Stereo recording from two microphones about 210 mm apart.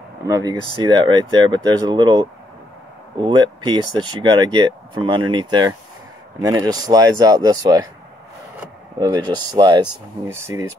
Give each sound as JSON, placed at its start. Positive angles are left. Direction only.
{"t": 0.3, "sound": "speech", "side_deg": -15}
{"t": 9.0, "sound": "speech", "side_deg": -20}